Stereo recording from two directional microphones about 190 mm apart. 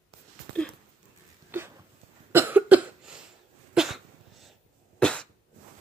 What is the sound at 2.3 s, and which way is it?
Cough, 10° right (ahead or behind).